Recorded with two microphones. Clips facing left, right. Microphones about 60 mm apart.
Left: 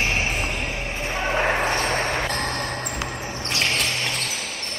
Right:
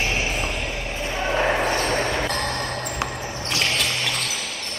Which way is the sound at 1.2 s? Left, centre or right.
Centre.